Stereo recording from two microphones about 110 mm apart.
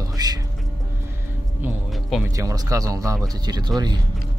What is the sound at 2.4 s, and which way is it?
Speech, 30° right (ahead or behind).